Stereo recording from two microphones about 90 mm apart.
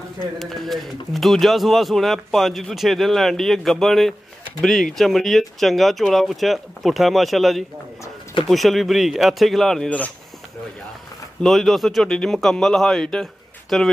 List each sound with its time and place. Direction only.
0.4 s speech: centre (ahead or behind)
9.8 s speech: 15° left (ahead or behind)
11.4 s speech: centre (ahead or behind)